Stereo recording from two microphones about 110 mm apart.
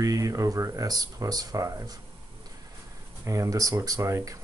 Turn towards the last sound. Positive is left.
turn(degrees=-30)  # may be behind; listen again after turning